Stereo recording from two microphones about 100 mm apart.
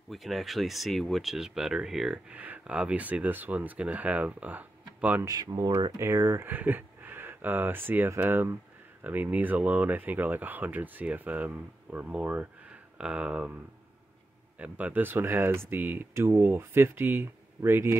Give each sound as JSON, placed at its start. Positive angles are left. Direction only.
{"t": 0.1, "sound": "speech", "side_deg": 0}
{"t": 5.2, "sound": "speech", "side_deg": -40}
{"t": 5.9, "sound": "speech", "side_deg": -25}
{"t": 14.6, "sound": "speech", "side_deg": -15}